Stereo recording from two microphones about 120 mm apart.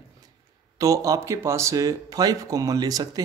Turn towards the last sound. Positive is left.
turn(degrees=-35)  # may be behind; listen again after turning